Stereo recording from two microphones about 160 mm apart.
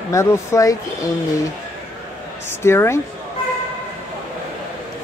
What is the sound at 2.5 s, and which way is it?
Speech, 15° left (ahead or behind).